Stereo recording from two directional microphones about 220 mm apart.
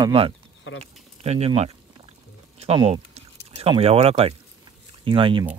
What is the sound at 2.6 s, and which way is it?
Speech, 25° right (ahead or behind).